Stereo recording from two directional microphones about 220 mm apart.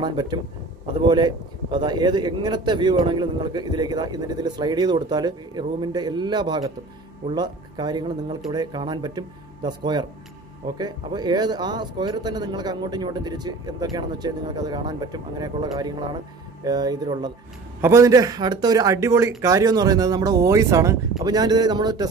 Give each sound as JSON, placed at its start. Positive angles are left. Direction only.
{"t": 0.0, "sound": "a man's voice", "side_deg": -20}